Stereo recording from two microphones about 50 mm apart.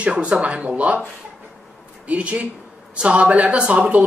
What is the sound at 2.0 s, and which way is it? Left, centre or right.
A man's voice, right.